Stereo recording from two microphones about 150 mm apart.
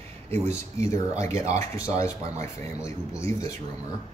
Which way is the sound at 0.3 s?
20° left (ahead or behind).